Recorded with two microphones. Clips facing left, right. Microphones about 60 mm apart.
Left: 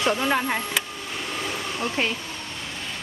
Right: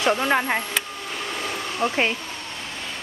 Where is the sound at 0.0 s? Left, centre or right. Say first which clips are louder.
Right 2 dB; centre.